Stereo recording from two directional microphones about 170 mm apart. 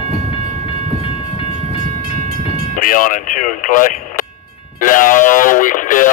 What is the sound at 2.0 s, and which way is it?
Train, 60° right (ahead or behind).